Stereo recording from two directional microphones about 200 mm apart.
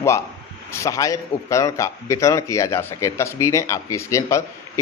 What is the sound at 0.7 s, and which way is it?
A man's voice, 15° left (ahead or behind).